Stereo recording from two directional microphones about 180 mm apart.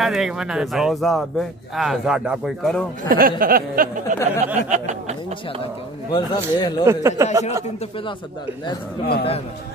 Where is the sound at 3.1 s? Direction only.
55° right (ahead or behind).